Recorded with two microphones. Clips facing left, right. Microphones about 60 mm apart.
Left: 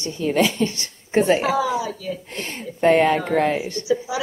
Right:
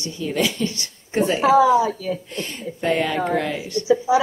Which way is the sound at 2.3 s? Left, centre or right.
Left.